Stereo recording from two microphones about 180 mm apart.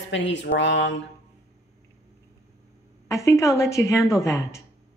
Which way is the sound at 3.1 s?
15° left (ahead or behind).